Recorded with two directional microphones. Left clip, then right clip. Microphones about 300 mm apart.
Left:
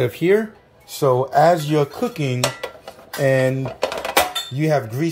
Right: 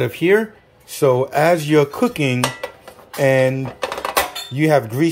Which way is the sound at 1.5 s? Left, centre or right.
Centre.